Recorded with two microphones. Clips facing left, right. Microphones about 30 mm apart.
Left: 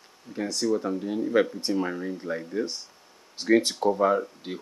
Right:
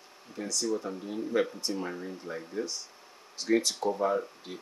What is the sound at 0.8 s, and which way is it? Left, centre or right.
Speech, left.